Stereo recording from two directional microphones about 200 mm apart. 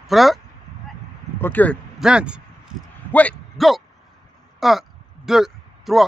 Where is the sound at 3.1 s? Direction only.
5° left (ahead or behind).